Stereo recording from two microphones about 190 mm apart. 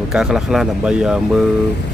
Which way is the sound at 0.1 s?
5° right (ahead or behind).